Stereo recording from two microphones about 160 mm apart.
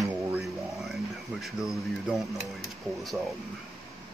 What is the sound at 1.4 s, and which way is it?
Speech, centre (ahead or behind).